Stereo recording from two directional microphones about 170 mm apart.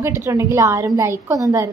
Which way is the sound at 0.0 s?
15° right (ahead or behind).